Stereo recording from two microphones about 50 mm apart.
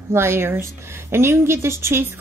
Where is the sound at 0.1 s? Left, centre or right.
Right.